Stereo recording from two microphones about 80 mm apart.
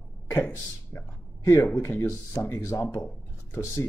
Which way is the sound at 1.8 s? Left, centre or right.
Left.